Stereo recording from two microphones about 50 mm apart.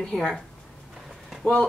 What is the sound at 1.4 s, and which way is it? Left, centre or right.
Speech, centre.